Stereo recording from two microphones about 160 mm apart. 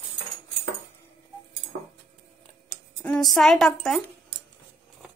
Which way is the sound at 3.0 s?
5° left (ahead or behind).